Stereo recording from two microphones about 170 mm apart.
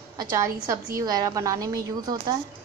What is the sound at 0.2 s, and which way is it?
A woman's voice, 20° right (ahead or behind).